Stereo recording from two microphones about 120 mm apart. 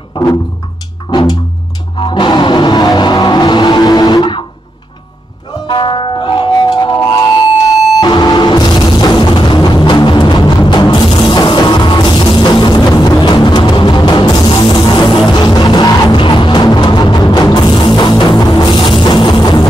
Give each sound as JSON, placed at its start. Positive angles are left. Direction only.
{"t": 2.0, "sound": "music", "side_deg": 40}
{"t": 5.7, "sound": "music", "side_deg": 40}
{"t": 8.0, "sound": "music", "side_deg": 35}